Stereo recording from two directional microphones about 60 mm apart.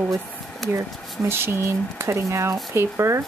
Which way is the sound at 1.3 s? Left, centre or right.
Right.